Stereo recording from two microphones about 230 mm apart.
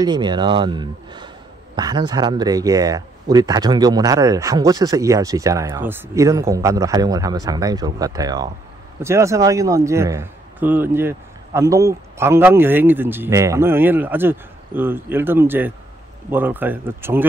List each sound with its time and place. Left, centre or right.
0.0 s speech: centre